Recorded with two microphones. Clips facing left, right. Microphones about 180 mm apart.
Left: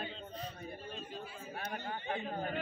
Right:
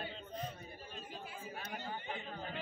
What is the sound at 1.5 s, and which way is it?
Speech, 55° left (ahead or behind).